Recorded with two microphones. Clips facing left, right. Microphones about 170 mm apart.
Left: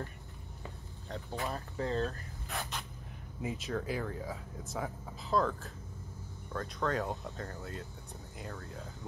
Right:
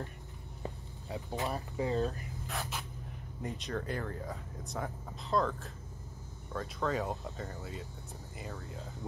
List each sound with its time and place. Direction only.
1.3 s speech: 20° right (ahead or behind)
2.4 s spray: centre (ahead or behind)
3.4 s speech: 5° left (ahead or behind)